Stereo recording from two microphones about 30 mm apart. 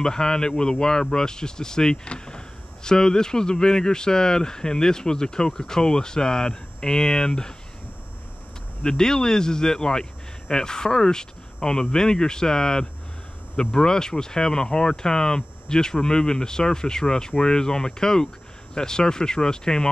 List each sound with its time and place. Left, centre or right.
0.0 s speech: left
8.8 s speech: left